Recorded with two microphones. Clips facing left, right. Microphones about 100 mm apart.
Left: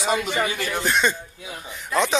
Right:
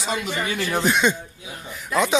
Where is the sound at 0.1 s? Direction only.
20° left (ahead or behind).